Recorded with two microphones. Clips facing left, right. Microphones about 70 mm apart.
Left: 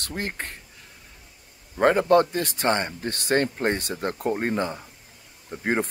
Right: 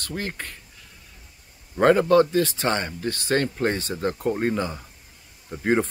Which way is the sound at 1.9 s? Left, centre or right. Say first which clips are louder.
Right 1 dB; left.